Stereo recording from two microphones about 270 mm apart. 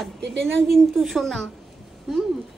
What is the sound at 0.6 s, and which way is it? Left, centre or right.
Speech, centre.